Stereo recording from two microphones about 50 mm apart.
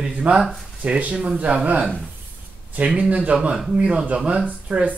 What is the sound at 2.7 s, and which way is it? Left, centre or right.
Speech, right.